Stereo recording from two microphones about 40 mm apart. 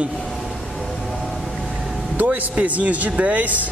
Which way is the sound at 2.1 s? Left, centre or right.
Right.